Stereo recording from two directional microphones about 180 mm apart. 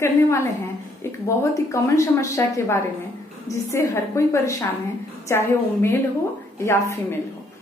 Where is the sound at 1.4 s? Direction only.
15° left (ahead or behind).